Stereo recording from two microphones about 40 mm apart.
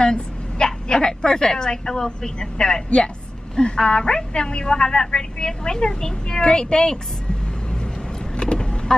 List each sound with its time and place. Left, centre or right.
0.0 s a woman's voice: centre
8.4 s vehicle: left